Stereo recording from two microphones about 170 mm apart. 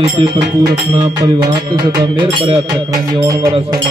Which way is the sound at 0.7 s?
20° right (ahead or behind).